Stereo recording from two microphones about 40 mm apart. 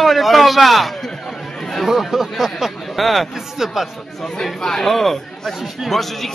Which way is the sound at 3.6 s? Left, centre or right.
Centre.